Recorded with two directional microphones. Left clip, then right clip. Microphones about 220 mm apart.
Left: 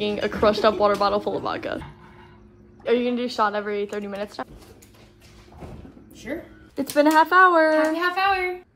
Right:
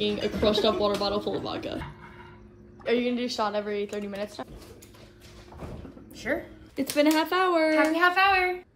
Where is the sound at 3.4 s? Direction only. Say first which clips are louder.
Left 6 dB; 25° left (ahead or behind).